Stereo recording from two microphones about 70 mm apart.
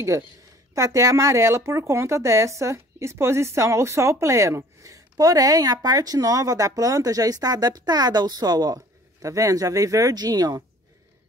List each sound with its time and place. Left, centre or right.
0.7 s speech: right
10.1 s speech: right